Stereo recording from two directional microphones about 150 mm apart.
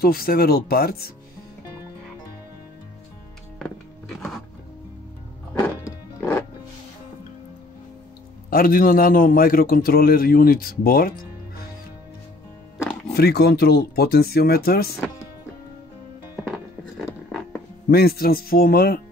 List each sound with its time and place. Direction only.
0.0 s speech: 90° left
5.5 s music: 15° left (ahead or behind)
8.5 s a man's voice: 75° left (ahead or behind)
13.1 s speech: 90° left
17.8 s a man's voice: 90° left